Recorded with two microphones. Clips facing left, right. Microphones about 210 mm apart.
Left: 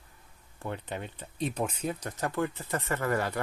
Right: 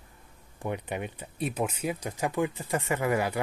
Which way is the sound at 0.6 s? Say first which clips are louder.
Right 4 dB; 15° right (ahead or behind).